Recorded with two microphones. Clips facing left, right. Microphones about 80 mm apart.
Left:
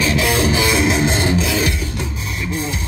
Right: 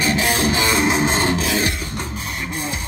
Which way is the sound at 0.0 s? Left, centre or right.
Right.